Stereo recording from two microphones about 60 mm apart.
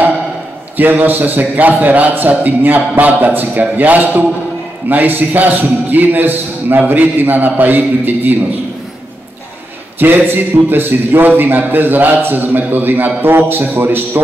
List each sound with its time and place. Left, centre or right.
0.7 s a man's voice: right
9.9 s a man's voice: right